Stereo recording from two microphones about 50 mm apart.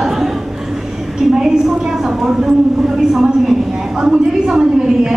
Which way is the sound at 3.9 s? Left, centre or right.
Centre.